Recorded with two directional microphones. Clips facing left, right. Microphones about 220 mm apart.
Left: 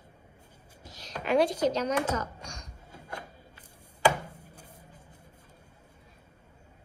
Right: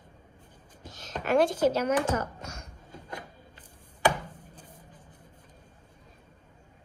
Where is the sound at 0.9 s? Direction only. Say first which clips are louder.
Right 3 dB; 45° right (ahead or behind).